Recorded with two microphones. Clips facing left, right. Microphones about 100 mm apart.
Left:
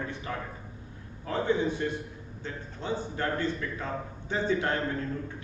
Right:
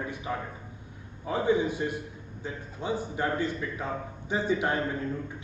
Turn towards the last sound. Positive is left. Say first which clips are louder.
# right 1 dB
turn(degrees=-15)  # may be behind; listen again after turning